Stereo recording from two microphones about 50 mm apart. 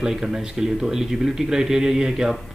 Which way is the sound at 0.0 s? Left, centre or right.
Centre.